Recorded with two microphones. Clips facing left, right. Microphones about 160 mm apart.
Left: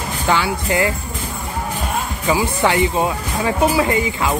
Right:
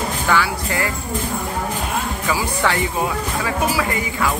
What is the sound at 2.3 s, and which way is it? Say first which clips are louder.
Speech: left 4 dB; 20° left (ahead or behind).